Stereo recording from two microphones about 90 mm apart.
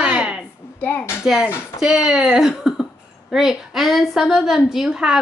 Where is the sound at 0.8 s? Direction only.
25° left (ahead or behind).